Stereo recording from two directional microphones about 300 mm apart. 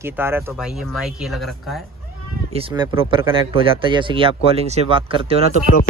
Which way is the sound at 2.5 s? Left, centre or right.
Centre.